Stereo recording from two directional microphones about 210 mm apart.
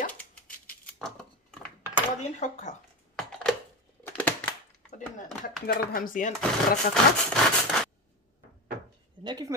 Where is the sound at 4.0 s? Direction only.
10° left (ahead or behind).